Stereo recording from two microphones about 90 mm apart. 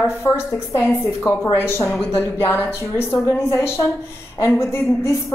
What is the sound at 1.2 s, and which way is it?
A woman's voice, 25° left (ahead or behind).